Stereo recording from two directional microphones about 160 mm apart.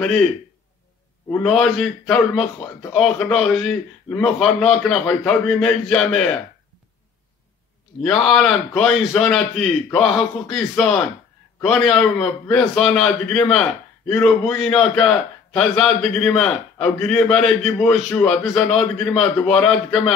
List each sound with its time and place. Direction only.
0.0 s a man's voice: 5° left (ahead or behind)
1.3 s a man's voice: 5° left (ahead or behind)
8.0 s a man's voice: centre (ahead or behind)